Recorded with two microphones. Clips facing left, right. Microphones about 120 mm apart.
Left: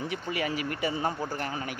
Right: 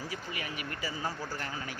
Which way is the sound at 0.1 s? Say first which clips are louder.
Left 8 dB; 90° left.